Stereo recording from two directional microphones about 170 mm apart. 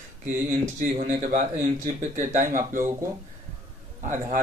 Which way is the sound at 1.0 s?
45° right (ahead or behind).